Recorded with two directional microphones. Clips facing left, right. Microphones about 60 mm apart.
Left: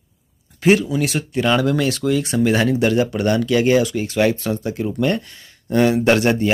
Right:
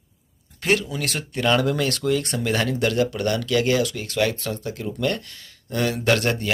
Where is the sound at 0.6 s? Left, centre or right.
Centre.